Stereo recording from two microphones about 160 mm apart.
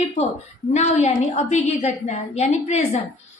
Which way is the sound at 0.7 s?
45° left (ahead or behind).